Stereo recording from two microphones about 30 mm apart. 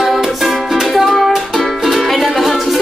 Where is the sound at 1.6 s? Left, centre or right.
Centre.